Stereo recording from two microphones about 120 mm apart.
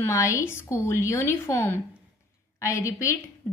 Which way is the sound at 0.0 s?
25° left (ahead or behind).